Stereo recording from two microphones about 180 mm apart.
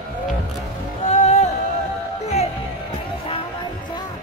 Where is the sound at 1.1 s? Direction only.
40° left (ahead or behind).